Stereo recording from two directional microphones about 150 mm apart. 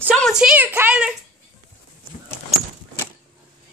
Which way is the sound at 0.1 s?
Centre (ahead or behind).